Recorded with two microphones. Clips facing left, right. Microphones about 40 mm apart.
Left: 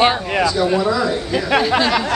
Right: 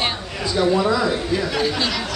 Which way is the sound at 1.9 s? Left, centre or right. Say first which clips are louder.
Left 8 dB; left.